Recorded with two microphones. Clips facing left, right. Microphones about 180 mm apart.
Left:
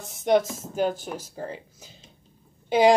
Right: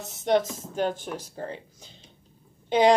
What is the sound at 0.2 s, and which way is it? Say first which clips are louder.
Speech: left 2 dB; 10° left (ahead or behind).